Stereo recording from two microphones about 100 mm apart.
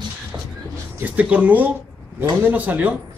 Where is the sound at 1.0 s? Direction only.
15° right (ahead or behind).